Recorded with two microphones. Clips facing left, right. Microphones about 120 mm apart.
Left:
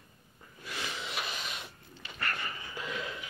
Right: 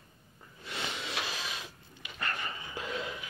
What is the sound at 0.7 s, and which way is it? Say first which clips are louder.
Snort: right 1 dB; 25° right (ahead or behind).